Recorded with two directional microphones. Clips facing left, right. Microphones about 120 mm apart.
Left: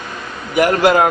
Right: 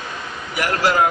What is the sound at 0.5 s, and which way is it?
Speech, 50° left (ahead or behind).